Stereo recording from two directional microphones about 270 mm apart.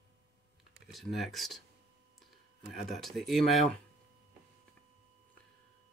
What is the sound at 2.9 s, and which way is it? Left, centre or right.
Speech, centre.